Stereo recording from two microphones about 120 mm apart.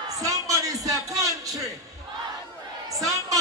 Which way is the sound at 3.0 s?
30° right (ahead or behind).